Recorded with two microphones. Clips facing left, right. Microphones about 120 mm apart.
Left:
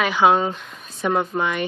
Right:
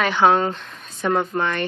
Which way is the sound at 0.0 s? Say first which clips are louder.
Even; 5° left (ahead or behind).